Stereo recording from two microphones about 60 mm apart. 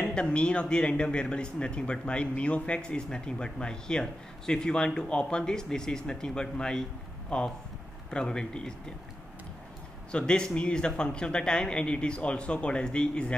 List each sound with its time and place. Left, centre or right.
0.1 s speech: centre
10.1 s speech: centre